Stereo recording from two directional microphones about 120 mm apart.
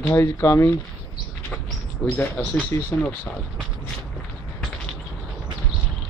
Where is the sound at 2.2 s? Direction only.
10° left (ahead or behind).